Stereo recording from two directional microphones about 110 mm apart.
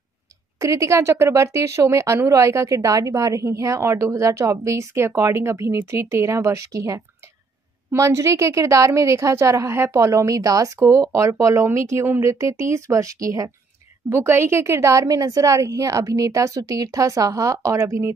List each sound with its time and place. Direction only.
0.6 s speech: 30° right (ahead or behind)